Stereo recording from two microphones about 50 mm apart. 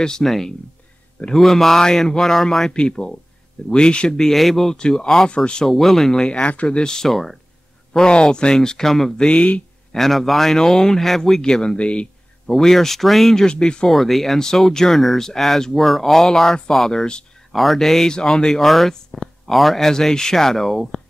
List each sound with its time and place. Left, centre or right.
0.0 s speech: centre
4.2 s speech: centre
4.7 s speech: centre
5.7 s speech: centre
6.2 s speech: left; by 9.3 s centre
9.3 s speech: left
9.9 s speech: centre; by 12.1 s left
12.4 s speech: centre
13.5 s speech: centre
13.8 s speech: centre
17.5 s speech: centre